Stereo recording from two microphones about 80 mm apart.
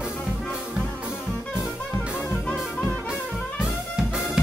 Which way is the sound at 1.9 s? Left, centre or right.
Left.